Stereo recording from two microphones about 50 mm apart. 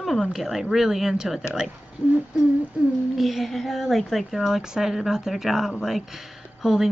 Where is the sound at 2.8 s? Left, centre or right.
Right.